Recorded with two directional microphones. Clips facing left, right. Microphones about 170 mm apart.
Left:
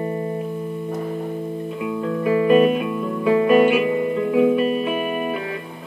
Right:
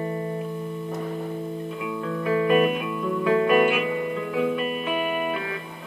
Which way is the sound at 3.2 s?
20° left (ahead or behind).